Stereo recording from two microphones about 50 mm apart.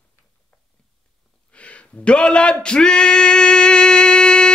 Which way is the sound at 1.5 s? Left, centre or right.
Left.